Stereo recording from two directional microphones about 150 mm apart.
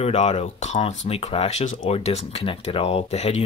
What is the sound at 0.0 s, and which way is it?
Speech, 45° left (ahead or behind).